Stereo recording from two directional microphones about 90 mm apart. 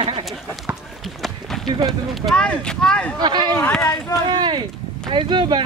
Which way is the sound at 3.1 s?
50° right (ahead or behind).